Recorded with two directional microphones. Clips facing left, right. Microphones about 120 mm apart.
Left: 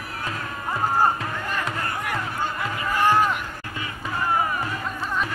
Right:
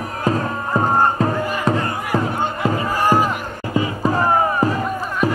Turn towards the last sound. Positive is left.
turn(degrees=-40)  # may be behind; listen again after turning